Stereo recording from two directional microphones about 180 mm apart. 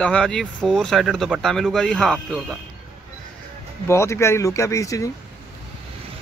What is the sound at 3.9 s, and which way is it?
Speech, 15° left (ahead or behind).